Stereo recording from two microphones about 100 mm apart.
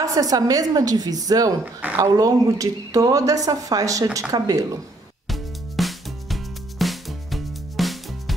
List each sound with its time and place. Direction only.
0.0 s speech: 35° right (ahead or behind)
1.6 s speech: 15° right (ahead or behind)
2.0 s speech: 35° right (ahead or behind)
5.3 s music: centre (ahead or behind)